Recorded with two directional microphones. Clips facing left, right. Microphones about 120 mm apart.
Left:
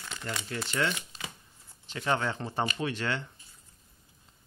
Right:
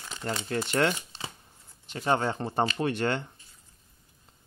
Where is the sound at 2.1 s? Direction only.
35° right (ahead or behind).